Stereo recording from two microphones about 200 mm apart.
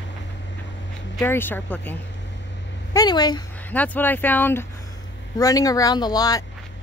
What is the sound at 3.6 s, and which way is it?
Speech, 10° left (ahead or behind).